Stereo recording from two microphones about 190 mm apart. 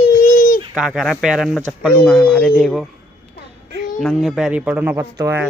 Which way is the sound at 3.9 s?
Centre (ahead or behind).